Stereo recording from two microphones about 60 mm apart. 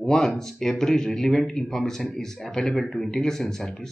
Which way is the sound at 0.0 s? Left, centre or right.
Centre.